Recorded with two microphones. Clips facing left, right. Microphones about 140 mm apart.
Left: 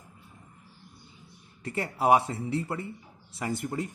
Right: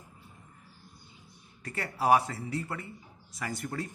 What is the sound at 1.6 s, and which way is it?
A man's voice, 25° left (ahead or behind).